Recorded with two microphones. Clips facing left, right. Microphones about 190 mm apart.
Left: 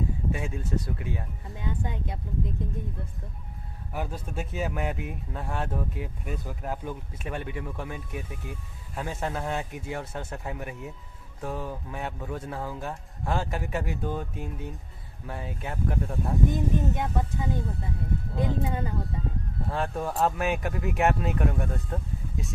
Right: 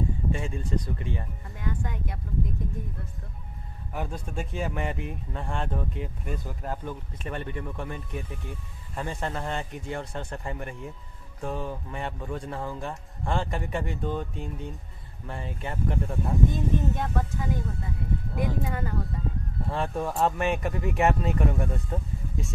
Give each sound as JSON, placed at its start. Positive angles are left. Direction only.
{"t": 0.3, "sound": "speech", "side_deg": 5}
{"t": 1.5, "sound": "speech", "side_deg": 20}
{"t": 3.9, "sound": "speech", "side_deg": 5}
{"t": 16.4, "sound": "speech", "side_deg": 15}
{"t": 18.6, "sound": "speech", "side_deg": 15}
{"t": 19.6, "sound": "speech", "side_deg": 0}